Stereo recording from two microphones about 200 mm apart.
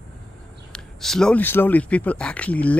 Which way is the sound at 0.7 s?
Centre (ahead or behind).